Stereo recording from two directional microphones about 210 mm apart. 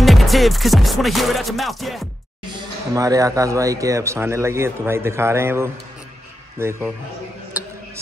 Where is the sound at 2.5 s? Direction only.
15° right (ahead or behind).